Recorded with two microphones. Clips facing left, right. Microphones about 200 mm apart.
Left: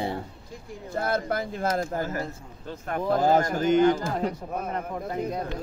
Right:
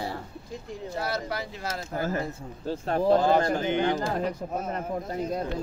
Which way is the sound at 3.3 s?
45° left (ahead or behind).